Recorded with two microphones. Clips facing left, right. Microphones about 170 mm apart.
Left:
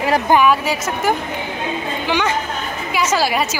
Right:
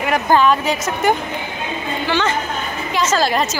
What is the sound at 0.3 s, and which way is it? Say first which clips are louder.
A woman's voice: right 1 dB; 10° left (ahead or behind).